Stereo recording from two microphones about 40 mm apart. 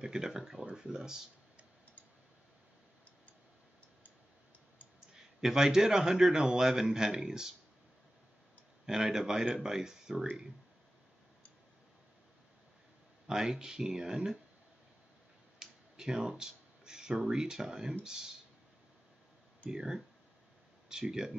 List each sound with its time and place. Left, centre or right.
0.0 s speech: centre
5.1 s speech: centre
8.8 s speech: centre
13.3 s speech: centre
15.6 s a sound: centre
17.3 s speech: centre
19.7 s speech: centre